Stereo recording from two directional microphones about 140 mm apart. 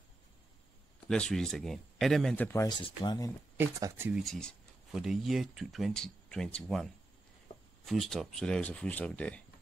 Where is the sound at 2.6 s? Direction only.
35° left (ahead or behind).